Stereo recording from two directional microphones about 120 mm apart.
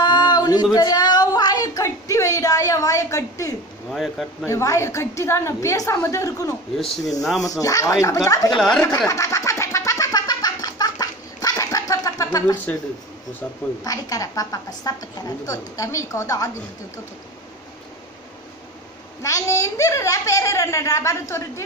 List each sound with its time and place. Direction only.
0.0 s a sound: 40° left (ahead or behind)
3.9 s speech: centre (ahead or behind)
4.5 s a woman's voice: 25° left (ahead or behind)
8.5 s speech: 5° left (ahead or behind)
8.8 s a sound: 25° left (ahead or behind)
13.8 s a woman's voice: 30° left (ahead or behind)
19.2 s a woman's voice: 25° left (ahead or behind)